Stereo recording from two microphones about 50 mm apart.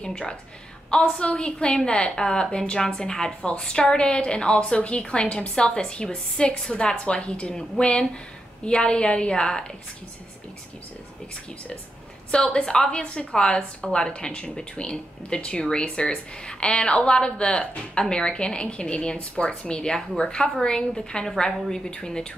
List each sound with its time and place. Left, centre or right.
0.0 s a woman's voice: centre
12.5 s a woman's voice: centre